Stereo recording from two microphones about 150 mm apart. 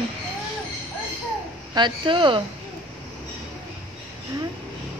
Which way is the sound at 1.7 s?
30° right (ahead or behind).